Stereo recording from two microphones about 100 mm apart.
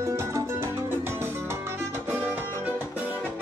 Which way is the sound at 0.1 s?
30° right (ahead or behind).